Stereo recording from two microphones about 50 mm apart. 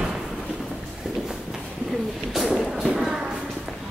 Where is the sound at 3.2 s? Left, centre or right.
Centre.